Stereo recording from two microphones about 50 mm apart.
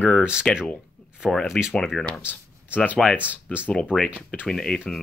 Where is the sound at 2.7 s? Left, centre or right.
Left.